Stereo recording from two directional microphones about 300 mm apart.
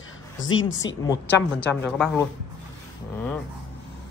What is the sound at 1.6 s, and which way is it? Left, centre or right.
Speech, centre.